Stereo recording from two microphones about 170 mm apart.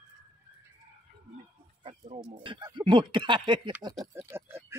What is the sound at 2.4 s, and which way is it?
Speech, 30° right (ahead or behind).